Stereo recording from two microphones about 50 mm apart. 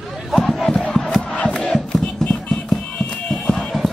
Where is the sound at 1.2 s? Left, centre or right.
Left.